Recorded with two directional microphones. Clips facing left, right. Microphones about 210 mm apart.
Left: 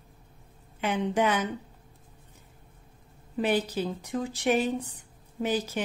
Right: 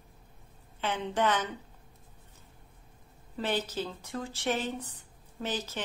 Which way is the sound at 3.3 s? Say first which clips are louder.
Left 5 dB; 15° left (ahead or behind).